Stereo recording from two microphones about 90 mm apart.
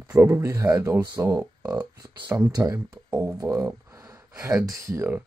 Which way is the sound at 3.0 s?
20° right (ahead or behind).